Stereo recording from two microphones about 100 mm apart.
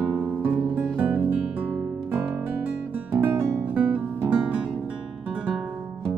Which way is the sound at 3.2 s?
20° right (ahead or behind).